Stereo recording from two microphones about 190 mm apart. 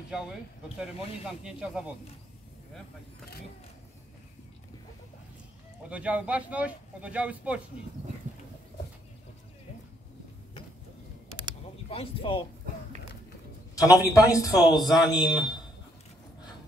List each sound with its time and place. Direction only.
0.7 s speech: 5° right (ahead or behind)
5.9 s speech: 5° right (ahead or behind)
11.9 s speech: 30° left (ahead or behind)
13.7 s speech: 15° left (ahead or behind)
14.6 s speech: centre (ahead or behind)
15.0 s speech: 20° left (ahead or behind)